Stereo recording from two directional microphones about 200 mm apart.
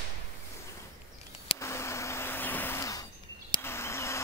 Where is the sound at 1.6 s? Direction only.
15° left (ahead or behind).